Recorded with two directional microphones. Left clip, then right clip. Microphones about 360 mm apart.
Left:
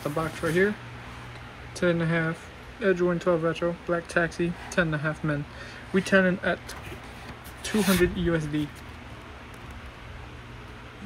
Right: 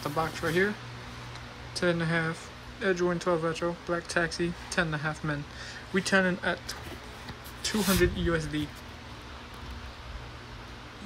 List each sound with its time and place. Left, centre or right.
0.2 s speech: centre
1.8 s speech: centre
7.6 s speech: centre